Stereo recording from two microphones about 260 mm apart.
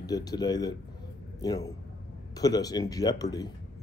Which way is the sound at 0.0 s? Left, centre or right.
Centre.